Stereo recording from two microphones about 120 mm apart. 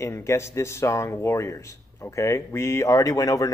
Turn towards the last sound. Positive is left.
turn(degrees=30)  # may be behind; listen again after turning